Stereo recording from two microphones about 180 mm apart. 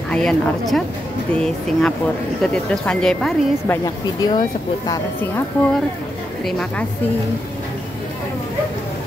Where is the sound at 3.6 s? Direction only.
20° left (ahead or behind).